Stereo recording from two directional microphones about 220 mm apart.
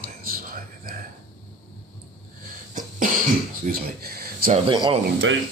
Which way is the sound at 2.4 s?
40° right (ahead or behind).